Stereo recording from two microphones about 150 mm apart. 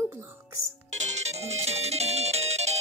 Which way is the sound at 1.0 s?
50° right (ahead or behind).